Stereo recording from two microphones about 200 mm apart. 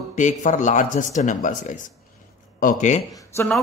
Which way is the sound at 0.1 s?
40° left (ahead or behind).